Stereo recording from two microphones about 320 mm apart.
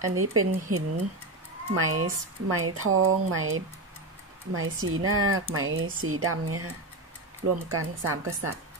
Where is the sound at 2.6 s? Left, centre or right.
Right.